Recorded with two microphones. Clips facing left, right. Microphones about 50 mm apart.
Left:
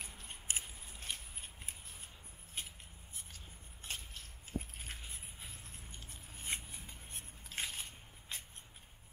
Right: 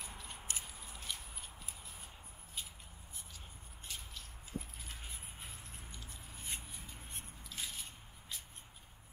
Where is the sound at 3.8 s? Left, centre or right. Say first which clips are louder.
Left 2 dB; left.